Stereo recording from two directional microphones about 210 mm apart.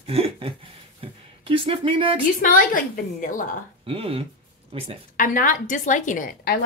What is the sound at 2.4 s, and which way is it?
A woman's voice, 40° left (ahead or behind).